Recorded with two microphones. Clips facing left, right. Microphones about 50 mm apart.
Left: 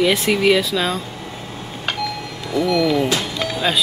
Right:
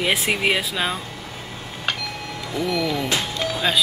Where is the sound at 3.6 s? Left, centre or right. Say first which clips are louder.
Left 2 dB; centre.